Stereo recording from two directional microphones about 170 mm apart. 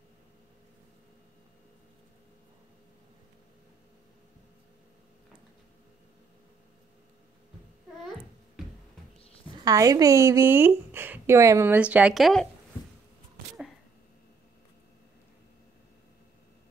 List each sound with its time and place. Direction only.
9.5 s speech: 25° right (ahead or behind); by 12.4 s centre (ahead or behind)